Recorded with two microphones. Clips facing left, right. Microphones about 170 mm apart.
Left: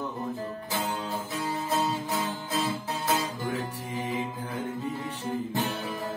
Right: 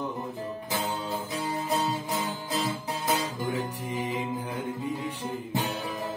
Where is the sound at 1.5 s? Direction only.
20° right (ahead or behind).